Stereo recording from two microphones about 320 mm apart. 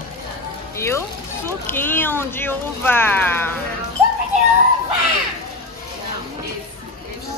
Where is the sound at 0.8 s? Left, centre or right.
Centre.